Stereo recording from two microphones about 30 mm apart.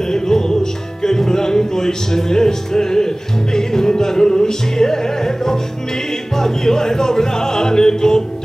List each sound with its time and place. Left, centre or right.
0.1 s music: centre
1.0 s speech: centre
3.5 s music: centre